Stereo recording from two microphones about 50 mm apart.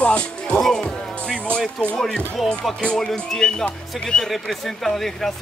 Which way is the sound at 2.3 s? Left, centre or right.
Centre.